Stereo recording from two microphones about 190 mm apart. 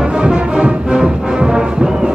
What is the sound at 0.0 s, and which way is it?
Music, 5° right (ahead or behind).